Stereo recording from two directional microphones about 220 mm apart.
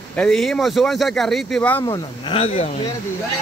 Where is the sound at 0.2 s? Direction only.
Centre (ahead or behind).